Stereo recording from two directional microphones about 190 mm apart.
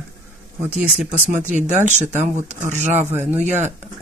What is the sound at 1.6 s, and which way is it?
Speech, 40° right (ahead or behind).